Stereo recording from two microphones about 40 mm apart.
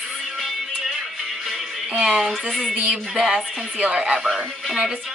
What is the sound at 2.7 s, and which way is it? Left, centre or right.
Music, right.